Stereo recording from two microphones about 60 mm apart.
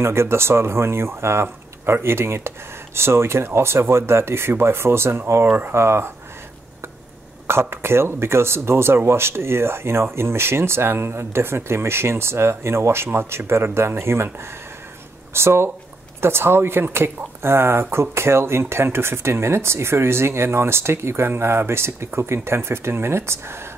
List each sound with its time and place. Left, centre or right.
0.0 s speech: right
7.4 s speech: right
15.3 s speech: right